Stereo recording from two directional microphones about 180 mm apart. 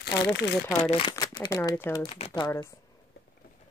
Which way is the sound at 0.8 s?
30° left (ahead or behind).